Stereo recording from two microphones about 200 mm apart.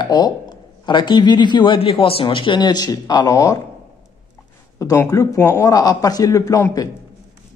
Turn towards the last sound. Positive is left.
turn(degrees=15)  # may be behind; listen again after turning